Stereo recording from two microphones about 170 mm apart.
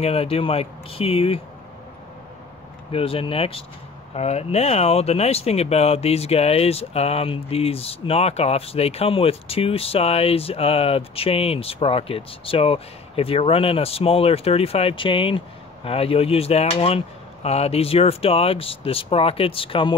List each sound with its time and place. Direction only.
0.0 s speech: 35° left (ahead or behind)
2.9 s speech: 35° left (ahead or behind)